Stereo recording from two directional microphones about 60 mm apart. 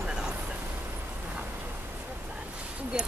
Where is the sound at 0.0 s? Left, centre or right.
Centre.